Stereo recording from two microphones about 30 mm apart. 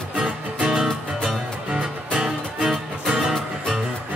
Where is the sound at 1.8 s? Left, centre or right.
Right.